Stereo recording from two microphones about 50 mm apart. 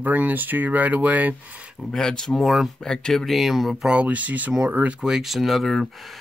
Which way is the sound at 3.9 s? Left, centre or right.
Right.